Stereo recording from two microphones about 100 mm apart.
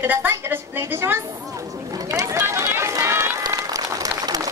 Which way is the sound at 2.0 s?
35° right (ahead or behind).